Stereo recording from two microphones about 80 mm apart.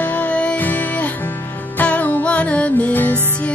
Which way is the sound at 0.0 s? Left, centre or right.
Centre.